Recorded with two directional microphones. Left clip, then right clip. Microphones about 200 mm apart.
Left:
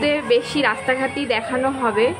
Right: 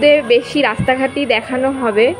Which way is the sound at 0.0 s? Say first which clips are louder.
Right 7 dB; 15° right (ahead or behind).